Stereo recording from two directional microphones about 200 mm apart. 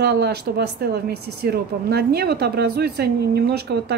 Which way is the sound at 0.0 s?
55° right (ahead or behind).